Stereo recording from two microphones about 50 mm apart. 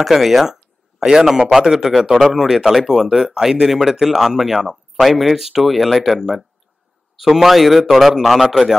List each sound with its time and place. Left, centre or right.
0.0 s speech: centre